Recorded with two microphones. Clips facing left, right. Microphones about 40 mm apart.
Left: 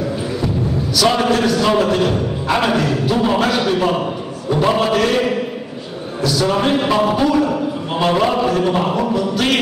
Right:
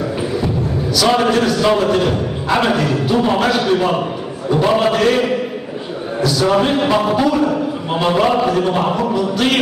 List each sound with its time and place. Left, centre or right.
0.9 s speech: centre
6.2 s speech: centre